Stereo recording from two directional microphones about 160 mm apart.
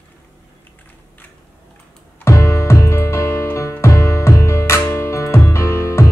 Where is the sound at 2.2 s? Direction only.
20° left (ahead or behind).